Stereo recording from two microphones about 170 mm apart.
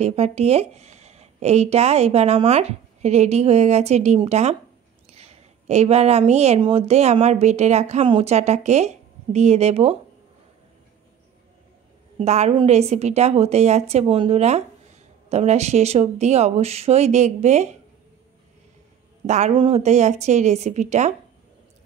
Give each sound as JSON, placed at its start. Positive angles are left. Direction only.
{"t": 0.0, "sound": "a woman's voice", "side_deg": -35}
{"t": 12.2, "sound": "speech", "side_deg": -40}
{"t": 19.2, "sound": "speech", "side_deg": -40}